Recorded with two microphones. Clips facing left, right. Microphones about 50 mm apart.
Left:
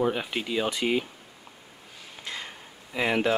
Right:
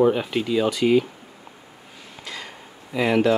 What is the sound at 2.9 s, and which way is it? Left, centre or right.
Speech, centre.